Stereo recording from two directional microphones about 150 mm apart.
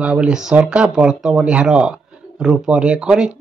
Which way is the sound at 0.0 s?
5° right (ahead or behind).